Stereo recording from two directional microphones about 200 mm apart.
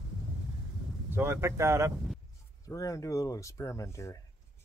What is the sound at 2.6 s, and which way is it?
Speech, 15° left (ahead or behind).